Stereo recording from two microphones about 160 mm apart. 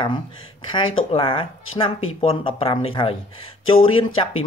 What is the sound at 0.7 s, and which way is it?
Speech, 35° left (ahead or behind).